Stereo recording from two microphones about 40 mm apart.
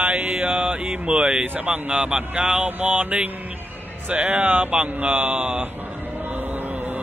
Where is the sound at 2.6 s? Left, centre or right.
Right.